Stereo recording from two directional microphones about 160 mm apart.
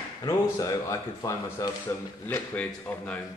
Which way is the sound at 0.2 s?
20° left (ahead or behind).